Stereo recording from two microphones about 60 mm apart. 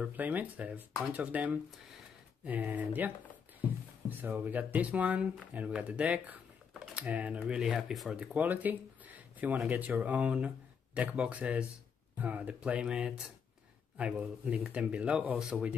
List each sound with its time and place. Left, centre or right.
0.0 s speech: right
4.2 s speech: right
7.6 s speech: centre
8.4 s speech: right